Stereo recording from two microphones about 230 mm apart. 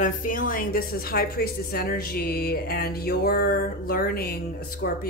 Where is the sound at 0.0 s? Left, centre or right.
Left.